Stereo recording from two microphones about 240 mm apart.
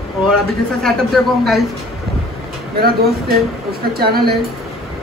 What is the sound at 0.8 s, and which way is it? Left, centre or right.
Speech, centre.